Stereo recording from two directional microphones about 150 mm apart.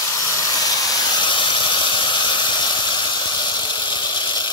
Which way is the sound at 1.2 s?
35° left (ahead or behind).